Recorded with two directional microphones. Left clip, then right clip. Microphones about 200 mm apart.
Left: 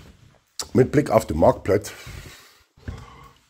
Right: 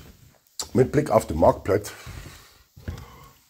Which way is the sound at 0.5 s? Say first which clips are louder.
Left 2 dB; 50° left (ahead or behind).